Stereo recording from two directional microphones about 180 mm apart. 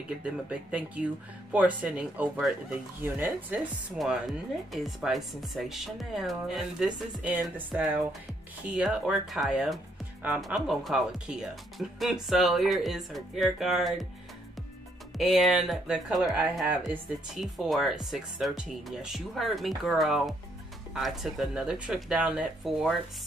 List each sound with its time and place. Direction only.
0.2 s speech: 5° right (ahead or behind)
4.0 s speech: centre (ahead or behind)
15.1 s speech: centre (ahead or behind)